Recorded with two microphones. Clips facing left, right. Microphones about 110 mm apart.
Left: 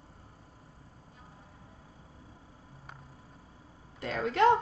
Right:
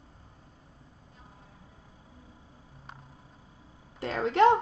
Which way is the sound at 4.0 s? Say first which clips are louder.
Right 3 dB; 30° right (ahead or behind).